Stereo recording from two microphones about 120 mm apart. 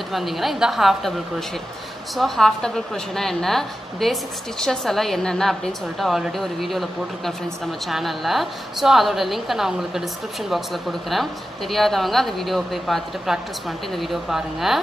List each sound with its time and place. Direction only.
0.1 s a woman's voice: centre (ahead or behind)
2.1 s a woman's voice: centre (ahead or behind)